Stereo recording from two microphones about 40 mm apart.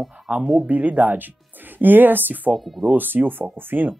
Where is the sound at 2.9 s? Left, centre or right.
Right.